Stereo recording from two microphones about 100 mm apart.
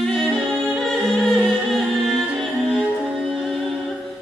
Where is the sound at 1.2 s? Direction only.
5° left (ahead or behind).